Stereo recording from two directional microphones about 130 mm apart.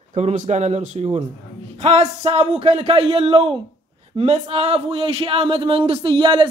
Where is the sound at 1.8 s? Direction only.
55° right (ahead or behind); by 6.4 s 35° right (ahead or behind).